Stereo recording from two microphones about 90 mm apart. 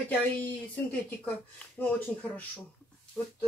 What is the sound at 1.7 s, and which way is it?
Speech, 20° left (ahead or behind).